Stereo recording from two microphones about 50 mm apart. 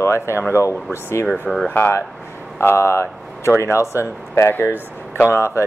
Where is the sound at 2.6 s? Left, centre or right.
Left.